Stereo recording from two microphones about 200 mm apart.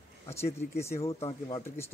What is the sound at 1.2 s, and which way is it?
Speech, 20° left (ahead or behind).